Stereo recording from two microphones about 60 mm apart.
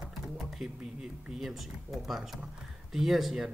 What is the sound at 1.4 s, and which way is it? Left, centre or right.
Speech, centre.